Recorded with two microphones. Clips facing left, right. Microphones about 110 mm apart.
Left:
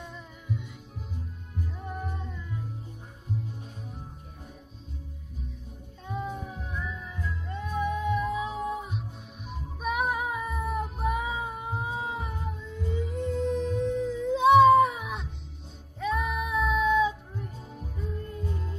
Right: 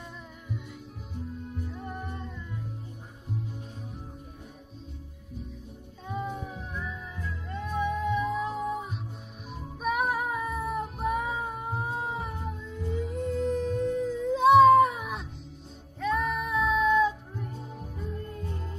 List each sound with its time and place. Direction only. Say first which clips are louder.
1.7 s music: left 1 dB; centre (ahead or behind)
6.0 s music: even; centre (ahead or behind)
9.5 s child singing: right 1 dB; centre (ahead or behind)
16.0 s music: right 1 dB; centre (ahead or behind)